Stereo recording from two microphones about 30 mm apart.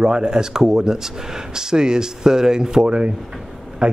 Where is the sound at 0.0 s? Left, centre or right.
Right.